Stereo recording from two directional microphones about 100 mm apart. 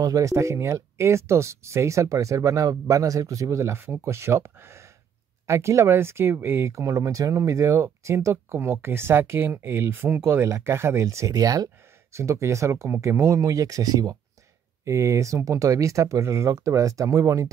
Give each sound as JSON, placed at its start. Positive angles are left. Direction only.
{"t": 0.0, "sound": "speech", "side_deg": -35}